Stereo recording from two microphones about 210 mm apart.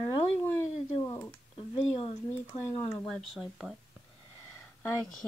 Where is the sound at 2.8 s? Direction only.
5° left (ahead or behind).